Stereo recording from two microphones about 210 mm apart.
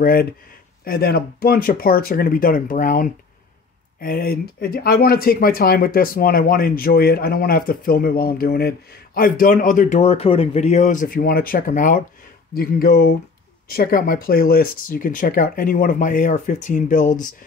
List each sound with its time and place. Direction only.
0.0 s speech: 45° left (ahead or behind)